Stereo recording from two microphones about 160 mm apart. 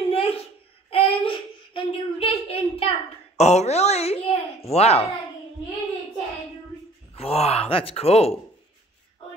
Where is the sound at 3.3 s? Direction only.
45° left (ahead or behind).